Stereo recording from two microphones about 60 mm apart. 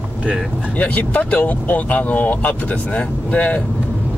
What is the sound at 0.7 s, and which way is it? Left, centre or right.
Speech, left.